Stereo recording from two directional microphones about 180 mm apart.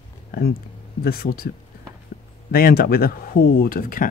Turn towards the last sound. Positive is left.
turn(degrees=50)  # may be behind; listen again after turning